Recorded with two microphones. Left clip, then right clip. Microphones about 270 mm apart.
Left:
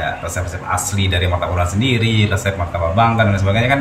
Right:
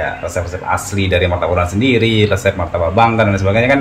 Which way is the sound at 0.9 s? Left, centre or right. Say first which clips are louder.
Right 5 dB; centre.